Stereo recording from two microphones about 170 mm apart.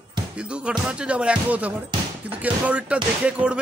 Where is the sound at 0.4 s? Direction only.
5° right (ahead or behind).